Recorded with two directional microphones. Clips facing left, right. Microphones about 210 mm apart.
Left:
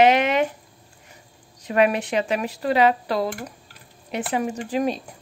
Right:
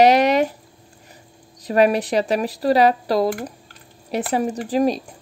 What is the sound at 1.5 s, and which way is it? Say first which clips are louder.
Speech: right 3 dB; 35° right (ahead or behind).